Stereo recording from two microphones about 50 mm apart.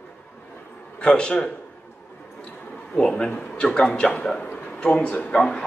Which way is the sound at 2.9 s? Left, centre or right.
Centre.